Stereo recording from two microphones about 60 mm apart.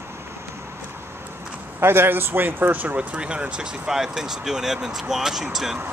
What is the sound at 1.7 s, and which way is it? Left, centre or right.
Speech, right.